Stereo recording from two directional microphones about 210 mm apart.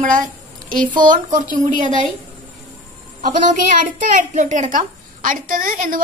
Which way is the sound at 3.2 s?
35° right (ahead or behind).